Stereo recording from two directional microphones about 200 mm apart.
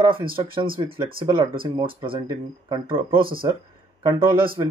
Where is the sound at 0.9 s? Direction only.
50° right (ahead or behind).